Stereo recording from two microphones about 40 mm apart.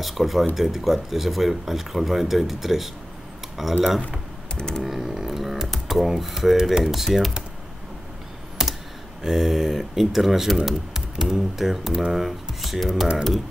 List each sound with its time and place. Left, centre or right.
0.0 s speech: centre
4.6 s typing: centre
4.8 s computer keyboard: centre
5.9 s speech: centre
6.8 s speech: centre
8.6 s computer keyboard: centre
9.2 s speech: centre